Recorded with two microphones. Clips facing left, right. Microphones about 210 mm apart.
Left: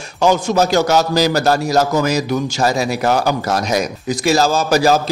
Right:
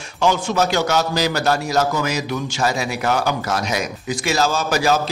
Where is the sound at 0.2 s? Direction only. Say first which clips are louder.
Left 4 dB; 40° left (ahead or behind).